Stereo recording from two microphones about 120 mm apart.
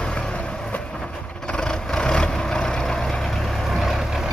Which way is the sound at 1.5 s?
5° left (ahead or behind).